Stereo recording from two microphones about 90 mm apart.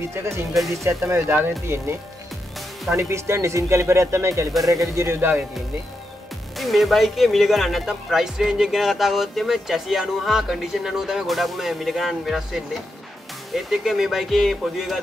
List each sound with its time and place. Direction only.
0.0 s speech: 30° right (ahead or behind)
3.0 s speech: 30° right (ahead or behind)
6.6 s speech: centre (ahead or behind)